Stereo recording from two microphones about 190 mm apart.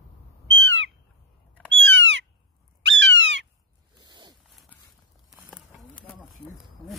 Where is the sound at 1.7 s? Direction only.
70° right (ahead or behind).